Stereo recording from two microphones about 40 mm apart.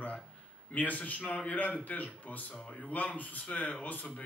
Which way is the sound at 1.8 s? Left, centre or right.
Left.